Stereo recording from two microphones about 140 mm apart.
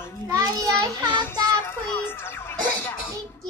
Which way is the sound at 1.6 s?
15° left (ahead or behind).